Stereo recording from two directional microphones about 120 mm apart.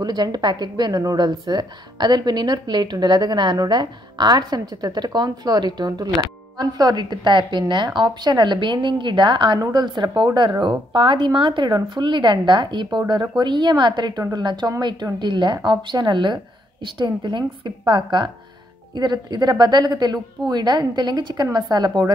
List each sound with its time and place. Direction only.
0.0 s a woman's voice: 35° right (ahead or behind)